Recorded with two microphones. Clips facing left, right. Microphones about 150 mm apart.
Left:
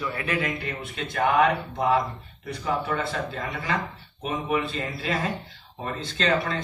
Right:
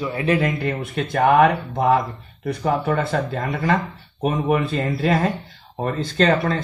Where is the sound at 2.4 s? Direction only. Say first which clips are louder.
Right 7 dB; 50° right (ahead or behind).